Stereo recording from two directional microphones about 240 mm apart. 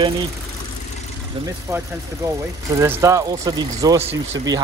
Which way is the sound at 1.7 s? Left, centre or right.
Centre.